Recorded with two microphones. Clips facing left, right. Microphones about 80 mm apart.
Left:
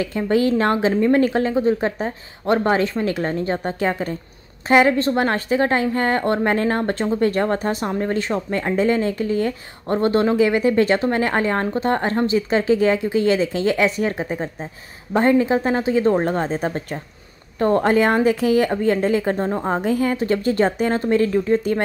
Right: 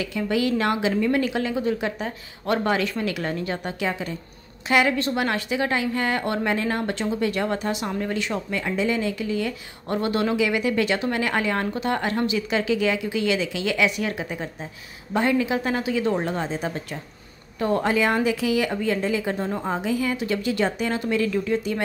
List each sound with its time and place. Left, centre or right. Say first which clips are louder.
0.0 s a woman's voice: left 5 dB; left